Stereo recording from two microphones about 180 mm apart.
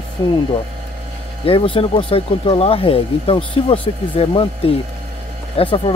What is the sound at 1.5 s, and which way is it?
Speech, 30° left (ahead or behind).